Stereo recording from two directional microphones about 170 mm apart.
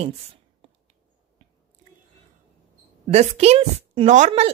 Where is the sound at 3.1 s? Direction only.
40° right (ahead or behind).